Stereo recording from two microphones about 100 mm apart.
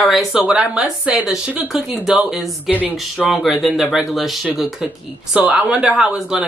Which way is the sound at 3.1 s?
Centre (ahead or behind).